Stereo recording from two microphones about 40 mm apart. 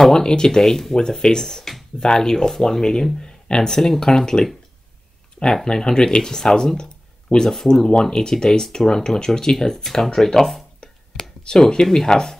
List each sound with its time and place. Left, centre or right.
0.0 s speech: centre
5.4 s speech: centre
11.1 s a sound: centre
11.8 s speech: centre